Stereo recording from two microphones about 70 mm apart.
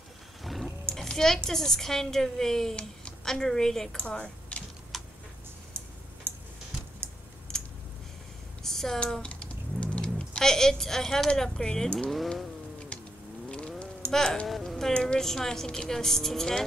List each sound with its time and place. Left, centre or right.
0.4 s vehicle: centre
0.8 s a woman's voice: centre
4.9 s tick: centre
6.3 s tick-tock: right
7.5 s a sound: centre
8.6 s a woman's voice: centre
13.5 s a sound: centre
14.1 s a woman's voice: centre